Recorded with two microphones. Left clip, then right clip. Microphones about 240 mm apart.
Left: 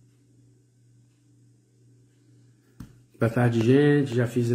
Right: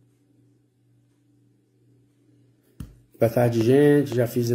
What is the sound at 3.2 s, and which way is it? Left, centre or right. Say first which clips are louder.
Speech: right 4 dB; centre.